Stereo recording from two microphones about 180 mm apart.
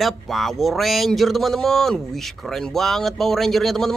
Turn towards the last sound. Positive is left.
turn(degrees=0)  # may be behind; listen again after turning